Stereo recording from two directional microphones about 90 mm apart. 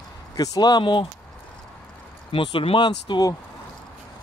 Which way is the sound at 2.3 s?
70° left (ahead or behind).